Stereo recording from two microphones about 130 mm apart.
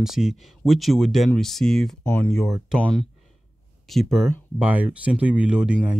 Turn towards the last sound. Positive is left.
turn(degrees=-5)  # may be behind; listen again after turning